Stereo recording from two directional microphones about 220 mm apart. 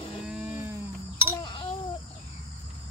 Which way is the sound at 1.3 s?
20° left (ahead or behind).